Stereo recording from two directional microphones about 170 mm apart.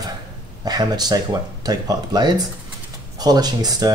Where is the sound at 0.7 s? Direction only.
25° right (ahead or behind).